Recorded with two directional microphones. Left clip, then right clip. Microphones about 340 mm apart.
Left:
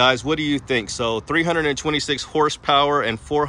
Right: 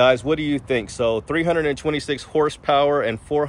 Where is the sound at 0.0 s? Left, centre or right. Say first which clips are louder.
Right 1 dB; centre.